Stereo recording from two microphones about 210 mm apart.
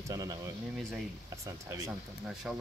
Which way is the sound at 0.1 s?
15° right (ahead or behind).